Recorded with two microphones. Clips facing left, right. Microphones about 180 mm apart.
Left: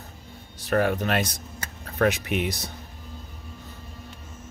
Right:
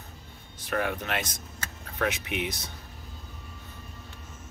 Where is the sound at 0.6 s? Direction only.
40° left (ahead or behind).